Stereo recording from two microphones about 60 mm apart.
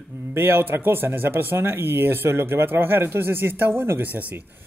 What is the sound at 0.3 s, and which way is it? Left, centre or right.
Speech, right.